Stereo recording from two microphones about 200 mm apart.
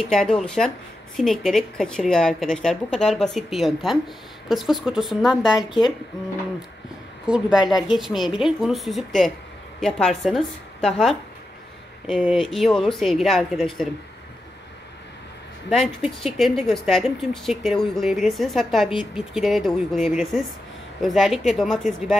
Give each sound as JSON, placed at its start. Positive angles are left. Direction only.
{"t": 0.1, "sound": "speech", "side_deg": 0}
{"t": 5.6, "sound": "speech", "side_deg": 20}
{"t": 7.2, "sound": "speech", "side_deg": -5}
{"t": 15.7, "sound": "speech", "side_deg": 0}